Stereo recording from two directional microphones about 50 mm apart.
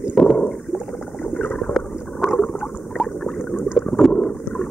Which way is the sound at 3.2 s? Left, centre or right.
Centre.